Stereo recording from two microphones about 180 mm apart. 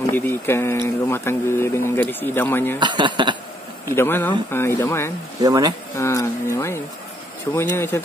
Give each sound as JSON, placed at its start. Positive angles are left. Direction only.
{"t": 0.0, "sound": "speech", "side_deg": 10}
{"t": 2.8, "sound": "speech", "side_deg": -25}
{"t": 3.8, "sound": "speech", "side_deg": 15}
{"t": 5.4, "sound": "speech", "side_deg": -20}
{"t": 5.9, "sound": "a sound", "side_deg": 15}
{"t": 7.5, "sound": "speech", "side_deg": 15}